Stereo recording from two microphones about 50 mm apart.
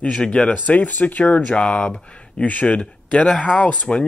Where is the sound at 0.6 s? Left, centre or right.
Left.